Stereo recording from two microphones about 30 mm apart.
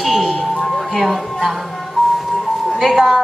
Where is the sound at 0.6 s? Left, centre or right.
Centre.